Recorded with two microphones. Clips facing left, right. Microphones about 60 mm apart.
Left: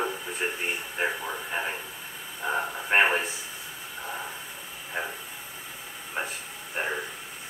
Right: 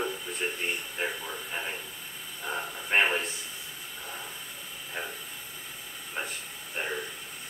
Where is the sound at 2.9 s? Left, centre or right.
Left.